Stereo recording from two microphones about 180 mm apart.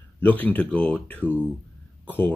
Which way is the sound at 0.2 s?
10° left (ahead or behind).